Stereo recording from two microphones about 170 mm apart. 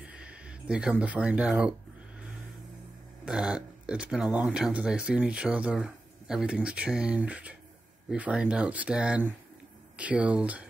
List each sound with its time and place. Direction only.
0.0 s speech: 5° right (ahead or behind)
3.3 s speech: 5° right (ahead or behind)